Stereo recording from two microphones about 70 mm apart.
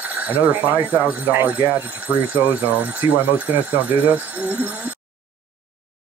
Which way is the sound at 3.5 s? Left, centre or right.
Right.